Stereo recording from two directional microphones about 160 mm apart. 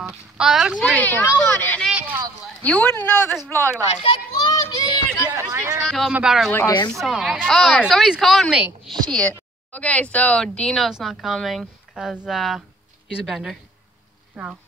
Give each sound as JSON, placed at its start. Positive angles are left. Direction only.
{"t": 0.0, "sound": "speech", "side_deg": -5}
{"t": 1.9, "sound": "a sound", "side_deg": -10}
{"t": 2.6, "sound": "speech", "side_deg": 10}
{"t": 4.0, "sound": "children playing", "side_deg": 35}
{"t": 5.3, "sound": "speech", "side_deg": -15}
{"t": 5.9, "sound": "speech", "side_deg": 0}
{"t": 9.1, "sound": "a woman's voice", "side_deg": 10}